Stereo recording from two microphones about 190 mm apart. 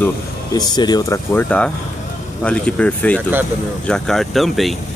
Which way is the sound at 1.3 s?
10° left (ahead or behind).